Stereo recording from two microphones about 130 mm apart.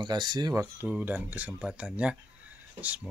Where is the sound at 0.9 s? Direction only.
10° right (ahead or behind).